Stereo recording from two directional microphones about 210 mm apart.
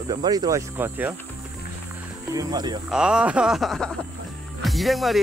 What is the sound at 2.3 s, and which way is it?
Speech, 20° right (ahead or behind).